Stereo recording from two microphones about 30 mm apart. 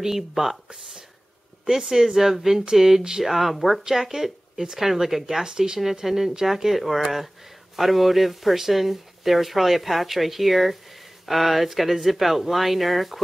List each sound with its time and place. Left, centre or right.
0.3 s speech: centre
1.7 s speech: centre
3.3 s speech: centre
3.9 s speech: centre
5.4 s speech: right
6.0 s speech: centre